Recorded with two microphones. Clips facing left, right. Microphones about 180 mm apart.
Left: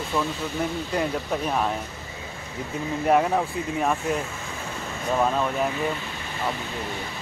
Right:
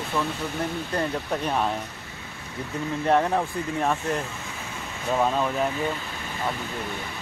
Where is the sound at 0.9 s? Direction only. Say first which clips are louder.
Left 1 dB; 5° left (ahead or behind).